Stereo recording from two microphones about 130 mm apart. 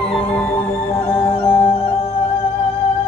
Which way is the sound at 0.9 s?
50° left (ahead or behind).